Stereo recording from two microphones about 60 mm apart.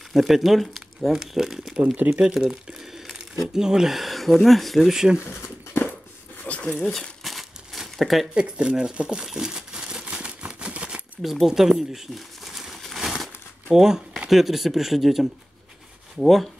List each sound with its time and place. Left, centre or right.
0.1 s speech: centre
2.0 s speech: right
2.3 s speech: centre
6.4 s a sound: left
6.9 s crumpling: centre
8.4 s crumpling: centre
11.2 s speech: centre
12.8 s crumpling: centre
13.7 s speech: centre